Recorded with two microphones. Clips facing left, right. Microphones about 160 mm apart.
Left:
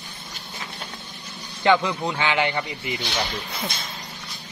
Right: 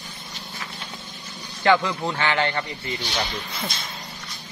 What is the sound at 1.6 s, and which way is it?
A man's voice, 20° left (ahead or behind).